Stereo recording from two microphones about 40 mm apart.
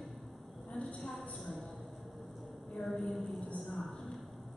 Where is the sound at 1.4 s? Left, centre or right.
Centre.